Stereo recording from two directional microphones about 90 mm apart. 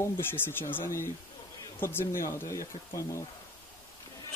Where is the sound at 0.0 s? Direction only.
25° left (ahead or behind).